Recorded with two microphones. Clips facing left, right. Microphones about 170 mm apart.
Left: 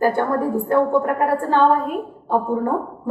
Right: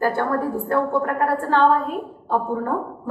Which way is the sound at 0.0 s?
15° left (ahead or behind).